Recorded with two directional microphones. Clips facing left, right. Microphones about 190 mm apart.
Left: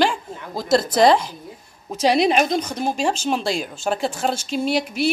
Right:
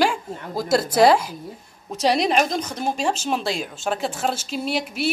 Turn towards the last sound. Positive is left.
turn(degrees=0)  # may be behind; listen again after turning